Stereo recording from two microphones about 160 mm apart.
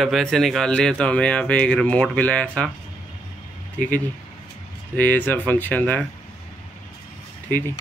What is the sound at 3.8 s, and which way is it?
A man's voice, 10° left (ahead or behind).